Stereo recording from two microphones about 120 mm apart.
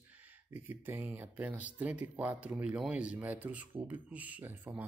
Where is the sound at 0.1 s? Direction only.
15° right (ahead or behind).